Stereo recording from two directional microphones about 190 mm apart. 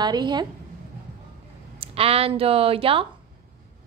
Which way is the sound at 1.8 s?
30° right (ahead or behind).